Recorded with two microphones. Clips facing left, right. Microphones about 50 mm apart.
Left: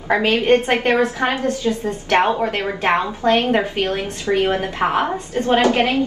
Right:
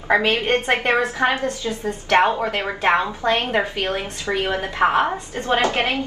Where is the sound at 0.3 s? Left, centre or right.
Right.